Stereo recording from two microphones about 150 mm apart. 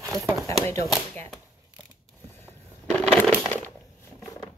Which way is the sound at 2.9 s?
Centre (ahead or behind).